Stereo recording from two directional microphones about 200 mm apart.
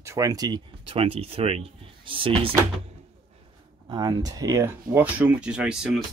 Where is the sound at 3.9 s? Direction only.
20° right (ahead or behind).